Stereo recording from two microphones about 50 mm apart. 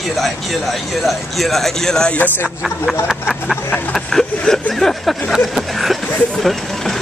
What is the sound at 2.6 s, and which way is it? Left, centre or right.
Speech, centre.